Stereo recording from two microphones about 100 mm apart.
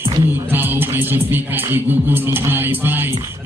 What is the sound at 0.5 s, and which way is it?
Music, 20° right (ahead or behind).